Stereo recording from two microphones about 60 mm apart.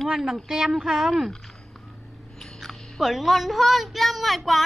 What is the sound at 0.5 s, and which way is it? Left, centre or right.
Speech, centre.